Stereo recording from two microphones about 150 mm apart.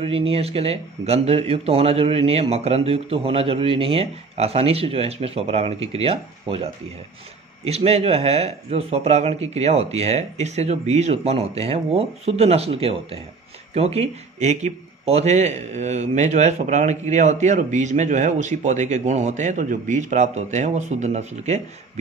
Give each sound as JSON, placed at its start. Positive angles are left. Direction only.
{"t": 0.0, "sound": "a man's voice", "side_deg": -40}